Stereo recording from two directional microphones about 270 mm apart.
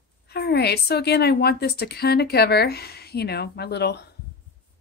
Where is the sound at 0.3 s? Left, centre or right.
Left.